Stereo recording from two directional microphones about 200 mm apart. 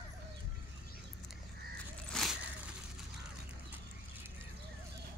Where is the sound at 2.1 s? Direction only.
5° left (ahead or behind).